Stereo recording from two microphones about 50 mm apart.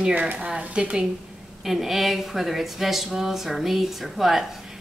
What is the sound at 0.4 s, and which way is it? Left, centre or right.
Speech, centre.